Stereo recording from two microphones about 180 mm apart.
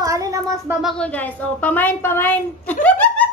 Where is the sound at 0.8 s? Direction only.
5° left (ahead or behind).